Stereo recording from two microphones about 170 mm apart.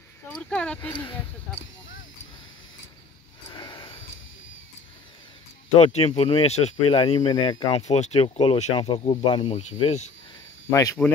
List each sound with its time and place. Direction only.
0.3 s speech: 5° left (ahead or behind)
3.4 s a sound: 25° left (ahead or behind)
5.8 s speech: 35° left (ahead or behind)
7.7 s speech: 40° left (ahead or behind)
10.7 s speech: 20° left (ahead or behind)